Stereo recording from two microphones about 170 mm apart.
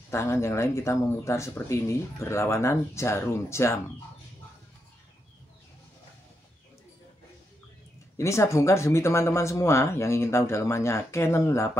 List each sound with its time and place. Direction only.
0.1 s speech: 15° left (ahead or behind)
8.2 s speech: 15° left (ahead or behind)